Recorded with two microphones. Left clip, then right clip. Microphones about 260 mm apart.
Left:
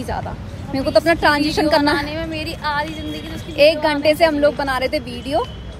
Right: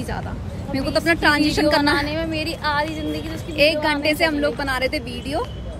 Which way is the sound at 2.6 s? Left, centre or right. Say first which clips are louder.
Left 1 dB; centre.